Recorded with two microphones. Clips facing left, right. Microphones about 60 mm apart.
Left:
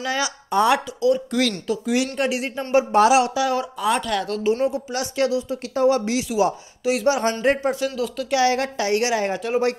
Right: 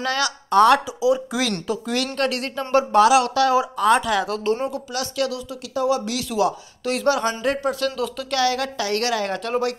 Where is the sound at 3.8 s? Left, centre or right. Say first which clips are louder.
Right 4 dB; centre.